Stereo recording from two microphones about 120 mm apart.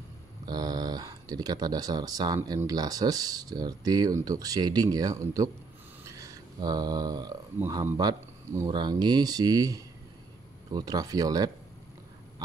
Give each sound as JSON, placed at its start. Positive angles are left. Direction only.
{"t": 0.5, "sound": "speech", "side_deg": -35}
{"t": 12.4, "sound": "dog", "side_deg": -30}